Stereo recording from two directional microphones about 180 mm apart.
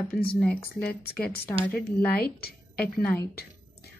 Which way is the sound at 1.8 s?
60° left (ahead or behind).